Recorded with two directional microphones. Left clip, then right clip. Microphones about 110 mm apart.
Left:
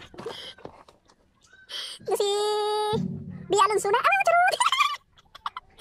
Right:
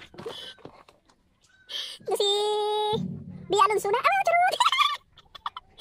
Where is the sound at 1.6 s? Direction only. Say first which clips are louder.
Even; 20° right (ahead or behind).